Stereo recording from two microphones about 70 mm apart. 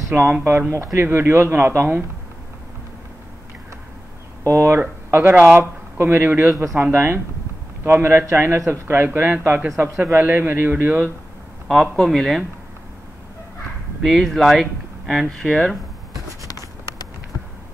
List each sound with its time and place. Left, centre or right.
0.1 s speech: right
4.5 s a man's voice: right
11.6 s a man's voice: centre
14.0 s speech: centre